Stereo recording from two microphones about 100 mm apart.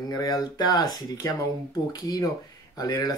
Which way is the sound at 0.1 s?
40° left (ahead or behind).